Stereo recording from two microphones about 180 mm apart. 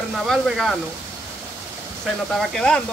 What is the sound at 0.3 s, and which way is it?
Speech, centre (ahead or behind).